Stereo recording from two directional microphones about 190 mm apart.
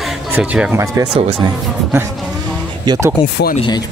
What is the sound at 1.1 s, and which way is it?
Speech, 25° right (ahead or behind).